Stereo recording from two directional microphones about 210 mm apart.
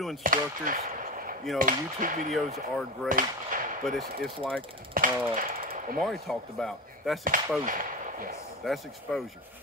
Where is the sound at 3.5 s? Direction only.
40° right (ahead or behind).